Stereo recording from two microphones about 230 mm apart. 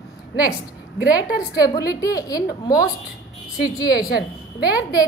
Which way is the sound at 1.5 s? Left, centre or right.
Centre.